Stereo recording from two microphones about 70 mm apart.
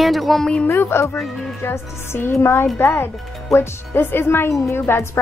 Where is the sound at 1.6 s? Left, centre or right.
Left.